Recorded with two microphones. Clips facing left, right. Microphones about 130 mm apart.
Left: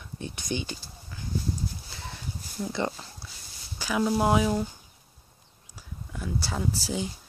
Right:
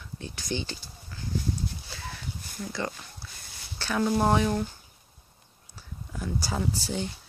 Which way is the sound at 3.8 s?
10° left (ahead or behind).